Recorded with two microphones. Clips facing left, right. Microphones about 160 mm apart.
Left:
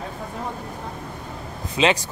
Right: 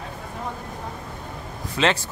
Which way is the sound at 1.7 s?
15° left (ahead or behind).